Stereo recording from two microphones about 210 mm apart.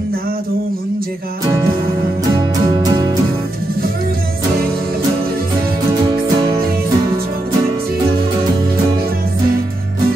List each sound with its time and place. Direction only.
2.3 s music: 20° right (ahead or behind)
6.0 s music: 20° right (ahead or behind)